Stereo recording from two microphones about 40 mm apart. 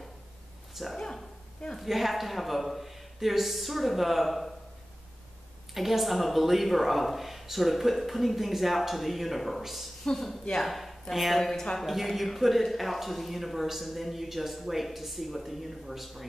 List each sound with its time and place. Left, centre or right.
0.9 s a woman's voice: centre
1.8 s speech: centre
5.8 s speech: centre
10.0 s speech: centre